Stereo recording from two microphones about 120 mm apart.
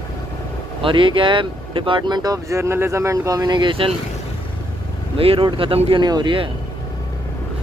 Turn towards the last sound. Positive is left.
turn(degrees=-40)  # may be behind; listen again after turning